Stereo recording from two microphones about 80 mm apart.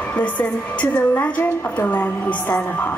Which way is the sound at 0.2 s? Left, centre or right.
Centre.